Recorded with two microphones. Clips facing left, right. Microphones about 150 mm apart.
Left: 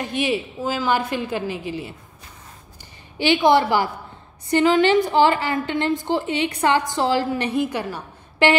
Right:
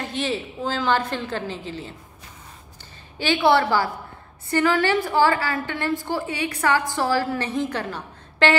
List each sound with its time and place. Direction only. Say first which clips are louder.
0.0 s a woman's voice: left 3 dB; 15° left (ahead or behind)
3.2 s a woman's voice: left 2 dB; 15° left (ahead or behind)